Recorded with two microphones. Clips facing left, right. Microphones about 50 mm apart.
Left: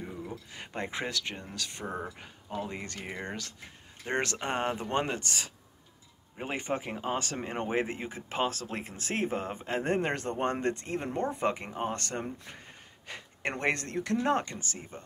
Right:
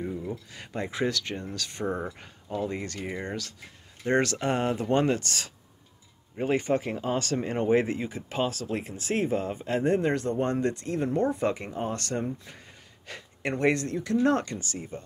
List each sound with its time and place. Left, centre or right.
0.5 s speech: left; by 2.6 s centre
2.6 s speech: left
9.8 s speech: left
13.1 s speech: left
13.4 s speech: left
14.4 s speech: left